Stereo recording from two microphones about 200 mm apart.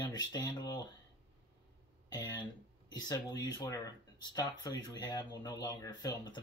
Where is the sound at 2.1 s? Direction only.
20° left (ahead or behind).